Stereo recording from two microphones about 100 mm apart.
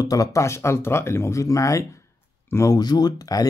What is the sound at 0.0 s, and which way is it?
Speech, 35° left (ahead or behind).